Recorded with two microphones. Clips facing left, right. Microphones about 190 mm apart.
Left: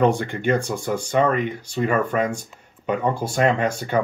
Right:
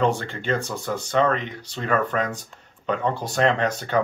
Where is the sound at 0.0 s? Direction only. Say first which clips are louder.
Left 4 dB; 15° left (ahead or behind).